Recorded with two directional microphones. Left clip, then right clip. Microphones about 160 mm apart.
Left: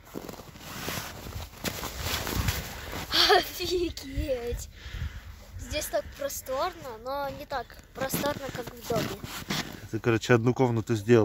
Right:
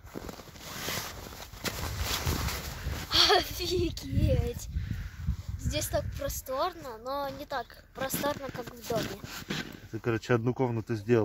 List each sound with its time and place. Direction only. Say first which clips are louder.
0.7 s boat: even; 20° right (ahead or behind)
1.6 s walk: left 1 dB; 5° left (ahead or behind)
3.1 s speech: left 2 dB; 10° left (ahead or behind)
5.7 s a woman's voice: left 2 dB; centre (ahead or behind)
6.6 s a woman's voice: left 1 dB; 10° right (ahead or behind)
9.1 s speech: left 3 dB; 15° left (ahead or behind)
10.0 s speech: left 5 dB; 30° left (ahead or behind)